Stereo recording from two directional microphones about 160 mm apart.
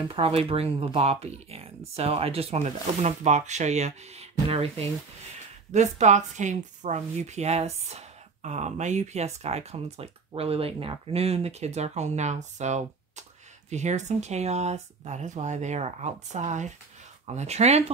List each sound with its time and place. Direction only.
0.1 s a woman's voice: 35° right (ahead or behind)